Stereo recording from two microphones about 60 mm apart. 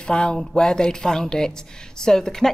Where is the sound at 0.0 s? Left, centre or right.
Centre.